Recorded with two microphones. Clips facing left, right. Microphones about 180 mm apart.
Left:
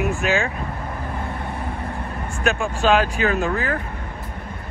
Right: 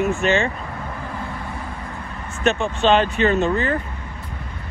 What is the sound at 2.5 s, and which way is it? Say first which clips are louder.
Speech: even; centre (ahead or behind).